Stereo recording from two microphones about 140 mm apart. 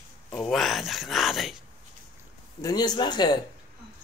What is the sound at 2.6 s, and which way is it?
Speech, 30° left (ahead or behind).